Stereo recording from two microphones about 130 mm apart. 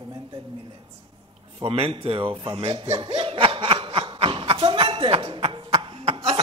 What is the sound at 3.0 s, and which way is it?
Snicker, 40° right (ahead or behind).